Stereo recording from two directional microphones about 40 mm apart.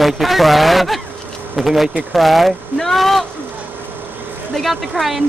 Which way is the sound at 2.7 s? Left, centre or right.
Centre.